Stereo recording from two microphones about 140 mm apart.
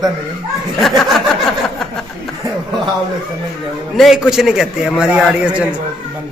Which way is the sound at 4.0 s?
5° right (ahead or behind).